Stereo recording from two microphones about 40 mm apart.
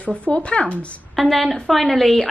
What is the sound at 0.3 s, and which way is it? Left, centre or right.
Speech, left.